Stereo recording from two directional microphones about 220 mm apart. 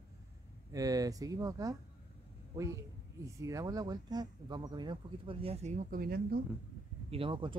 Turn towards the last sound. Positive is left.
turn(degrees=-25)  # may be behind; listen again after turning